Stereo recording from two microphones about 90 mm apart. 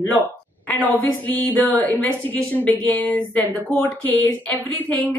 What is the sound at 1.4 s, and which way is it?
A woman's voice, 15° left (ahead or behind).